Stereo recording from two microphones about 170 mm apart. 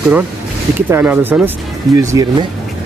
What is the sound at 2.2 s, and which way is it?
Speech, 20° right (ahead or behind).